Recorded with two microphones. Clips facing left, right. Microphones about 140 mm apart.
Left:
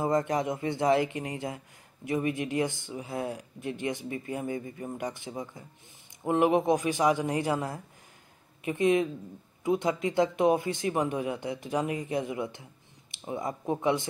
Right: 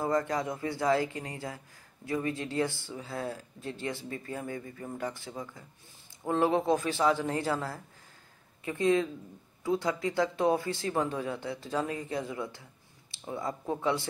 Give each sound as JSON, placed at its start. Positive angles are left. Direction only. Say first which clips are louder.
{"t": 0.0, "sound": "speech", "louder": "left 2 dB", "side_deg": 20}